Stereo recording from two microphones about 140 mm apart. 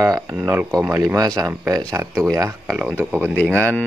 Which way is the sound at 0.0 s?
25° right (ahead or behind).